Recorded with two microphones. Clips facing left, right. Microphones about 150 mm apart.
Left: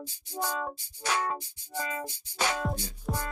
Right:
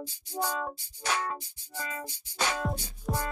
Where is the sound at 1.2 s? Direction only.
15° left (ahead or behind).